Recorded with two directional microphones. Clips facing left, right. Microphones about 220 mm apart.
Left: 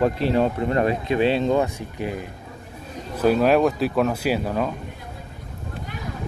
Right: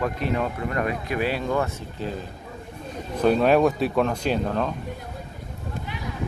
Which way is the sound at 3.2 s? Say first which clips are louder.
Left 1 dB; 5° left (ahead or behind).